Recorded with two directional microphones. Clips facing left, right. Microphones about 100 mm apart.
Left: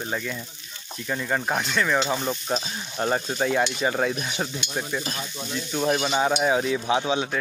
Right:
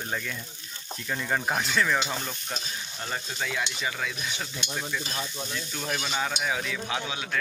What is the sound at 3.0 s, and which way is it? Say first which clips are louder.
Stir: left 10 dB; 45° left (ahead or behind).